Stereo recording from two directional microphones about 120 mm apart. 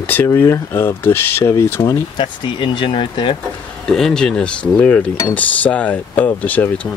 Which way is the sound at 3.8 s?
5° left (ahead or behind).